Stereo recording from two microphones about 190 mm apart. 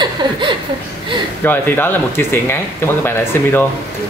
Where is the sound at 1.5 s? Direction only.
10° left (ahead or behind).